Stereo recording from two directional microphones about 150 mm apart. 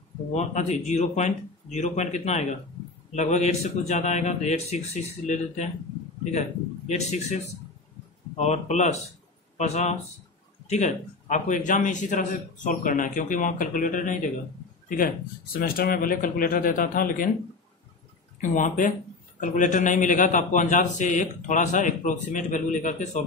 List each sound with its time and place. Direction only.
0.3 s a man's voice: 50° left (ahead or behind)
6.9 s a man's voice: 50° left (ahead or behind)
8.4 s a man's voice: 50° left (ahead or behind)
14.9 s speech: 70° left (ahead or behind)
18.4 s a man's voice: 60° left (ahead or behind)